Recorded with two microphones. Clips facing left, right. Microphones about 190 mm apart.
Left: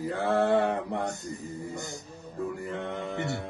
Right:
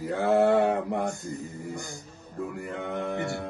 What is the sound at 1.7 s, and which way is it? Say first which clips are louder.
Speech: even; 20° left (ahead or behind).